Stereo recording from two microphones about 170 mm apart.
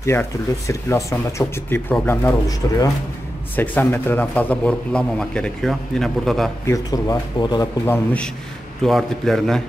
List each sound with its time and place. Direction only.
0.0 s a man's voice: 15° left (ahead or behind)
6.7 s speech: 20° left (ahead or behind)
7.9 s a man's voice: 10° left (ahead or behind)